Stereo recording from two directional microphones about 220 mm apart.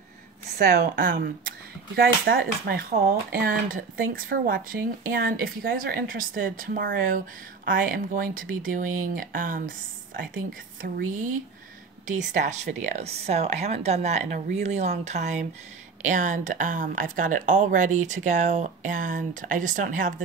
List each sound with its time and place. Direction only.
0.6 s speech: 50° right (ahead or behind)